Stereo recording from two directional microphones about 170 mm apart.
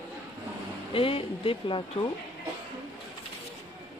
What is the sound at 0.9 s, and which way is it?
Speech, 30° left (ahead or behind).